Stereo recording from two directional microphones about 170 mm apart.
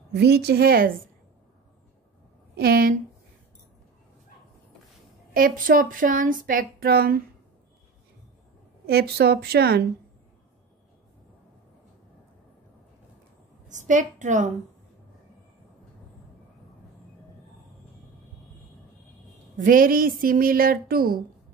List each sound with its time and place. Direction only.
0.1 s a woman's voice: 75° right (ahead or behind)
2.5 s a woman's voice: 60° right (ahead or behind)
5.3 s speech: 55° right (ahead or behind)
8.8 s a woman's voice: 70° right (ahead or behind)
13.7 s a woman's voice: 45° right (ahead or behind)
19.5 s speech: 55° right (ahead or behind)